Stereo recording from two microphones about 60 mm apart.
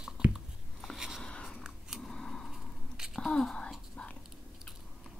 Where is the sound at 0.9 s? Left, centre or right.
Centre.